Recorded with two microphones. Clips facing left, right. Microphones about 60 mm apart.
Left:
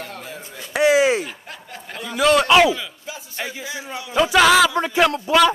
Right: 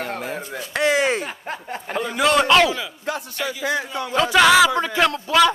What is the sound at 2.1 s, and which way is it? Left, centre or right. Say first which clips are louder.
Speech: left 2 dB; centre.